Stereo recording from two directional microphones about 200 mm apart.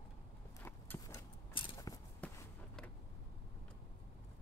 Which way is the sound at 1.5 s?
25° left (ahead or behind).